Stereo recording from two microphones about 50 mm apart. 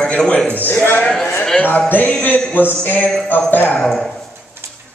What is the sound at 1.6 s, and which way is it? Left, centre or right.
A man's voice, left.